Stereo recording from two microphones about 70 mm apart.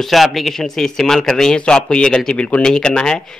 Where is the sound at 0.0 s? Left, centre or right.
Centre.